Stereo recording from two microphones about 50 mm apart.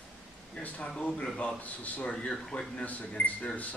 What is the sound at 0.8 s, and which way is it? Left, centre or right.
Speech, centre.